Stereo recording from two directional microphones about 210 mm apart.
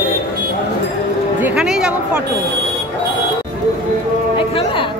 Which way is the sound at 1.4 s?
5° right (ahead or behind).